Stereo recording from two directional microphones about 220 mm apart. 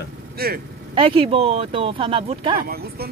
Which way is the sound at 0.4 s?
45° right (ahead or behind).